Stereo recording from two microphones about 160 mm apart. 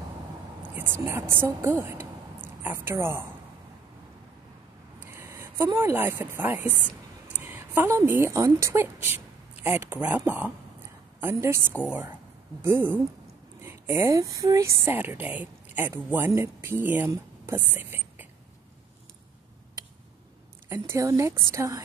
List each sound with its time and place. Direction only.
0.6 s a woman's voice: 15° right (ahead or behind)
5.0 s a woman's voice: 15° right (ahead or behind)
20.6 s a woman's voice: 15° right (ahead or behind)